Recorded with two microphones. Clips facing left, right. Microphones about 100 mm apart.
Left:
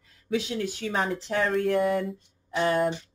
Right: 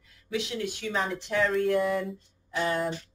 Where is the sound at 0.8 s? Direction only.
50° left (ahead or behind).